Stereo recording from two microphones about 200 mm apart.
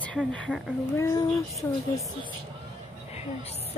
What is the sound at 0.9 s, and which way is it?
Speech, 15° left (ahead or behind).